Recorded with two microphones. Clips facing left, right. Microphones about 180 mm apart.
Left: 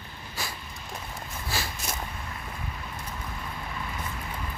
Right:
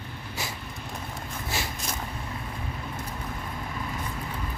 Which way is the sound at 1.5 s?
20° right (ahead or behind).